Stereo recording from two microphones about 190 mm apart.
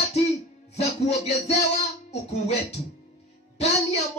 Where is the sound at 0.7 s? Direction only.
35° left (ahead or behind).